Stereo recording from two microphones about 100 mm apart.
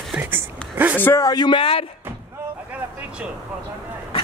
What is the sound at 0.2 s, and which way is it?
Speech, 20° right (ahead or behind).